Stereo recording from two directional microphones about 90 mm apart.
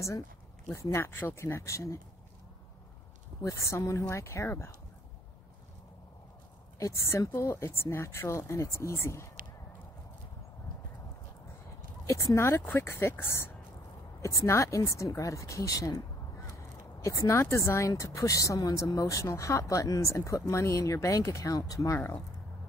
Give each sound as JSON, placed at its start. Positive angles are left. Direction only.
{"t": 0.7, "sound": "speech", "side_deg": 35}
{"t": 3.4, "sound": "speech", "side_deg": 35}
{"t": 6.8, "sound": "speech", "side_deg": 30}
{"t": 12.1, "sound": "speech", "side_deg": 35}